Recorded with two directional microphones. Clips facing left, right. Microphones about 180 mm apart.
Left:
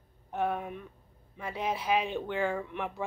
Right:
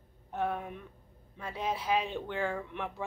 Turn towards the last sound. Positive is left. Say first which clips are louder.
# left 3 dB
turn(degrees=15)  # may be behind; listen again after turning